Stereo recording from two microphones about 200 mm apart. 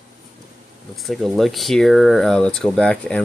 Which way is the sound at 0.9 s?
Centre (ahead or behind).